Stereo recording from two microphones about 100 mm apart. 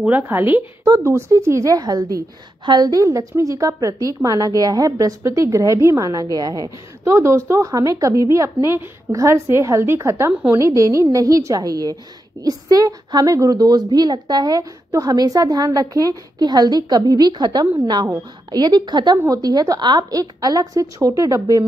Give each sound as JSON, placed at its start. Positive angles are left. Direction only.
{"t": 0.0, "sound": "a woman's voice", "side_deg": -20}